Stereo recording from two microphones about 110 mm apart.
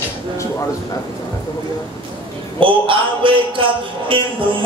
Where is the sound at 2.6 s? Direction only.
50° right (ahead or behind).